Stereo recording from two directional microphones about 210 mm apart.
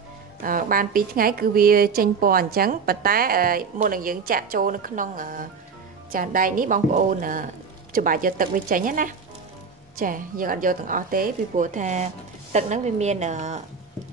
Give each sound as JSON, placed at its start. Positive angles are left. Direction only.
{"t": 0.4, "sound": "a woman's voice", "side_deg": -40}